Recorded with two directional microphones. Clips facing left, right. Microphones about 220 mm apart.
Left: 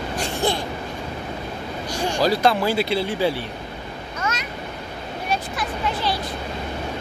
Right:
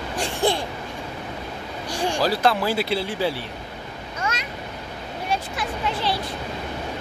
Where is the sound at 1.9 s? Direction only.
30° right (ahead or behind).